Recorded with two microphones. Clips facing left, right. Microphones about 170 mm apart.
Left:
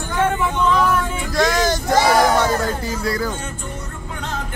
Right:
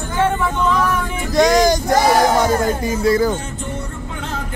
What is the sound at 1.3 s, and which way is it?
Vehicle, 20° right (ahead or behind).